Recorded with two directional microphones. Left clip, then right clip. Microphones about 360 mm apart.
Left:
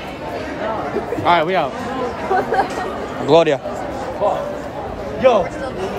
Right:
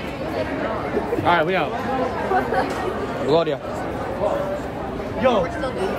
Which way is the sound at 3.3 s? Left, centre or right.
Centre.